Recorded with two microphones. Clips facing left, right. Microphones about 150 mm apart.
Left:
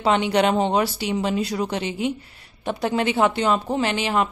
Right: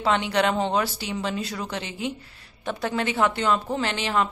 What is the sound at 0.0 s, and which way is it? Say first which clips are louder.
Speech: left 3 dB; 20° left (ahead or behind).